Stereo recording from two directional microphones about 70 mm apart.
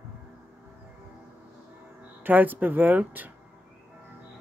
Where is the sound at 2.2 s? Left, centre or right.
Right.